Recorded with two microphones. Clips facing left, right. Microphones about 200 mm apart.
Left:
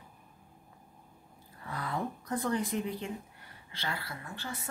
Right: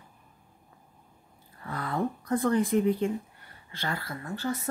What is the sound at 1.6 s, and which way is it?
A woman's voice, 55° right (ahead or behind).